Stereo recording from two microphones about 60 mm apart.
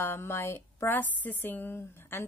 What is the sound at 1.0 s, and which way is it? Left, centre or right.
A woman's voice, left.